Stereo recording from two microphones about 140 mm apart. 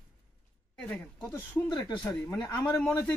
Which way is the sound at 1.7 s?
30° left (ahead or behind).